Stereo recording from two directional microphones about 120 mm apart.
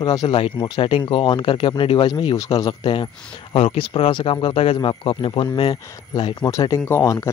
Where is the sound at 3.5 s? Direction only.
50° left (ahead or behind).